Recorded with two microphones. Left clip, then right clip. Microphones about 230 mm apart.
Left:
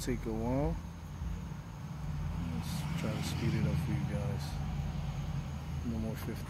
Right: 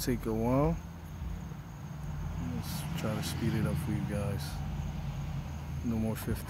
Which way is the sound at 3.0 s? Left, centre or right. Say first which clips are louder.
Right 4 dB; right.